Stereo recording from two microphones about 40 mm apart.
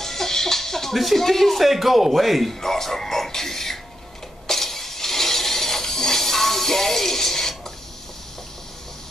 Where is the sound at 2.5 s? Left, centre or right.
Centre.